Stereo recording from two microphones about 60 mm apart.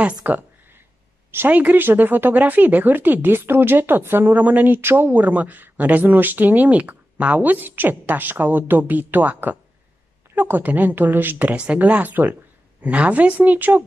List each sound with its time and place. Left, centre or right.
0.0 s speech: right
11.5 s speech: right